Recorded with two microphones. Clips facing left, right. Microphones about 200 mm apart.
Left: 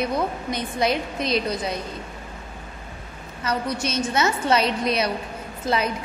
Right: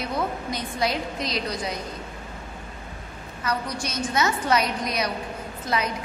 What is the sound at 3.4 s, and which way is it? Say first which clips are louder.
A woman's voice: left 3 dB; 25° left (ahead or behind).